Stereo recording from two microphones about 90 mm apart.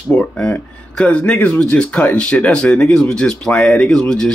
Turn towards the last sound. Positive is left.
turn(degrees=5)  # may be behind; listen again after turning